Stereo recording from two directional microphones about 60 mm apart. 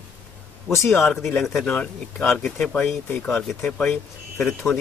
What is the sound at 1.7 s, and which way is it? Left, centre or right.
Speech, left.